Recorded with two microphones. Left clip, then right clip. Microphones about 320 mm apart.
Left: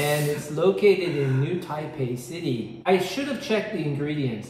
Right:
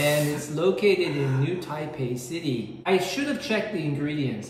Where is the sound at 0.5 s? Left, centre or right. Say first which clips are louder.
Left 2 dB; centre.